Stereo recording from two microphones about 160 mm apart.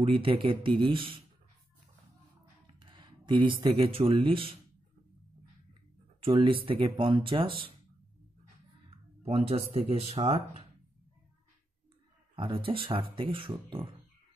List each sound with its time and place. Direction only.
0.0 s speech: 35° right (ahead or behind)
2.6 s speech: 30° right (ahead or behind)
6.2 s speech: 35° right (ahead or behind)
9.2 s speech: 40° right (ahead or behind)
12.4 s speech: 30° right (ahead or behind)